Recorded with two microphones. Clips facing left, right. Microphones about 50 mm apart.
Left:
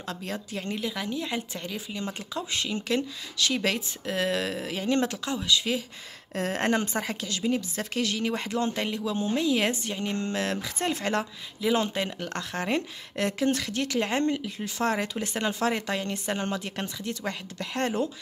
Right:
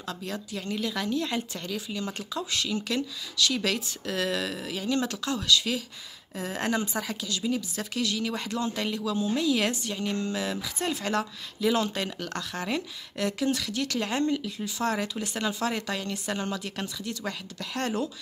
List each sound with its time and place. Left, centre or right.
0.0 s speech: left
0.7 s speech: centre
6.3 s a woman's voice: left
10.2 s speech: left